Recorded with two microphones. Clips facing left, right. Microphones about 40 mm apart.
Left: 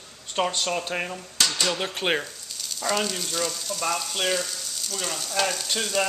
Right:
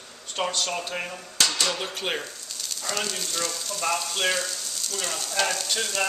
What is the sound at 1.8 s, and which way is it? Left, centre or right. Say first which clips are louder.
Speech: left 4 dB; left.